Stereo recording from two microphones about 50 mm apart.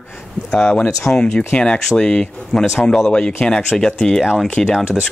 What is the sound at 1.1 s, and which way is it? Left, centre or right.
Speech, centre.